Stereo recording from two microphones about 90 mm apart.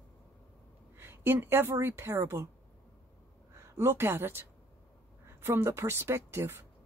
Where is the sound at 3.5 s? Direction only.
30° right (ahead or behind).